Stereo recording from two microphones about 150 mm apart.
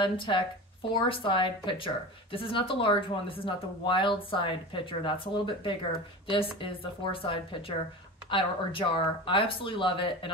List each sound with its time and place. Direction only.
0.0 s speech: 35° left (ahead or behind)